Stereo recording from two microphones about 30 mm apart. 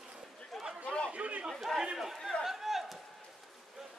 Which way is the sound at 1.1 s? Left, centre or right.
Right.